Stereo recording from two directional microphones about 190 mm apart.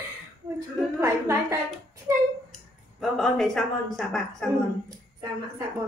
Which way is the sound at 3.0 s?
Centre (ahead or behind).